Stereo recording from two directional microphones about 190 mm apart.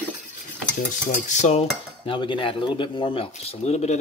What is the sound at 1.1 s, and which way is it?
Speech, 40° left (ahead or behind).